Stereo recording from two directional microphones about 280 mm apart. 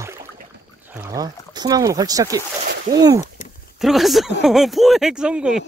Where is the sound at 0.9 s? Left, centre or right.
Centre.